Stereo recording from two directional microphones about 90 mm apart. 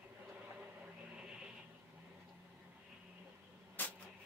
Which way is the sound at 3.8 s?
20° left (ahead or behind).